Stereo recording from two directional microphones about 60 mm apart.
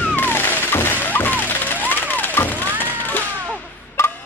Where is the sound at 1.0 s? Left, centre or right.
Left.